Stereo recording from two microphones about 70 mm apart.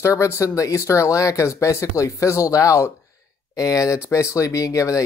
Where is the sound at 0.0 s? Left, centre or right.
Left.